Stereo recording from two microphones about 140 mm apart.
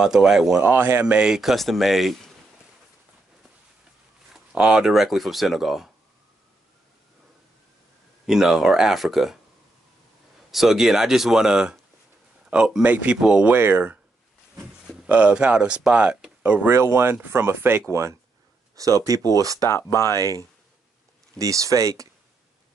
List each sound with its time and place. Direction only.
0.0 s speech: 5° right (ahead or behind)
4.3 s speech: 5° right (ahead or behind)
8.3 s speech: 5° right (ahead or behind)
10.5 s speech: centre (ahead or behind); by 19.7 s 25° right (ahead or behind)
19.7 s speech: 20° left (ahead or behind)
20.1 s speech: 25° right (ahead or behind)